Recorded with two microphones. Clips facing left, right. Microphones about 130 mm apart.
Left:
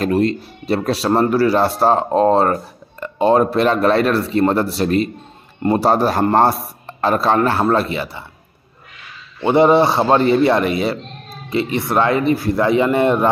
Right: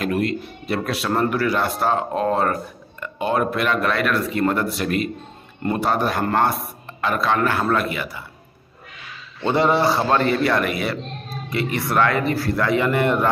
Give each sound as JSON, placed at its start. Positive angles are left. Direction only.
{"t": 0.0, "sound": "speech", "side_deg": 30}
{"t": 9.4, "sound": "a man's voice", "side_deg": 20}